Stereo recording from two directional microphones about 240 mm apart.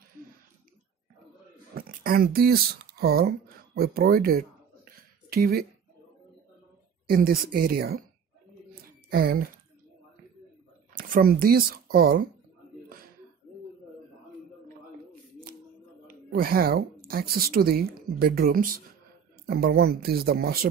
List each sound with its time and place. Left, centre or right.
1.8 s a sound: right
7.1 s speech: right
9.1 s speech: right
11.0 s speech: right
16.1 s a sound: right
17.1 s speech: right